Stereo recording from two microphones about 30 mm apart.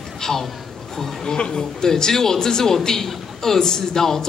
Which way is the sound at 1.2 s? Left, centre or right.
Left.